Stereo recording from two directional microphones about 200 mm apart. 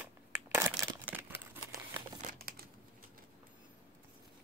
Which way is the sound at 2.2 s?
45° right (ahead or behind).